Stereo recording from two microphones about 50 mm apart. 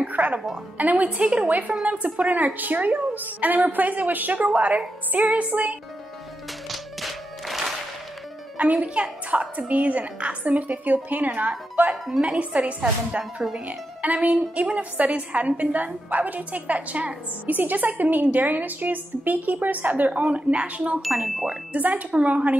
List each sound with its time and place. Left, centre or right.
0.0 s music: right
0.7 s a woman's voice: right
6.7 s music: centre
8.5 s a woman's voice: right
13.2 s speech: centre
13.7 s a woman's voice: right
21.0 s speech: centre
21.7 s a woman's voice: right